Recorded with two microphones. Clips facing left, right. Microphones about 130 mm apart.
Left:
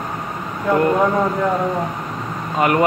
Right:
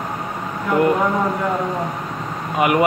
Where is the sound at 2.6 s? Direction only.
10° right (ahead or behind).